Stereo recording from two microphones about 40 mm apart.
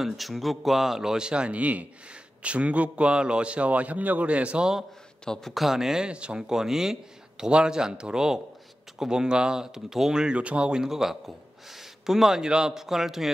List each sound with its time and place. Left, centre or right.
0.0 s speech: centre
1.1 s speech: right
1.5 s a man's voice: right
5.4 s a man's voice: centre
6.0 s a man's voice: right
10.4 s a man's voice: right
10.7 s a man's voice: centre